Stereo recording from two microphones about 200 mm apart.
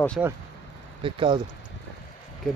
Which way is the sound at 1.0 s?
25° right (ahead or behind).